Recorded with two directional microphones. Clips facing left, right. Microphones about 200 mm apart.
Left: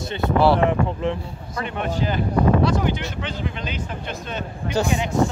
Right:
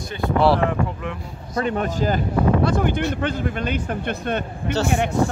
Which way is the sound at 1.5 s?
40° right (ahead or behind).